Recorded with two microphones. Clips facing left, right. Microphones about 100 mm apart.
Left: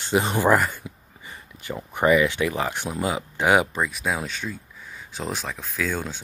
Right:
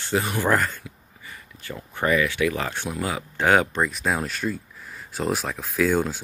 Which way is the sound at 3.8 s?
Centre (ahead or behind).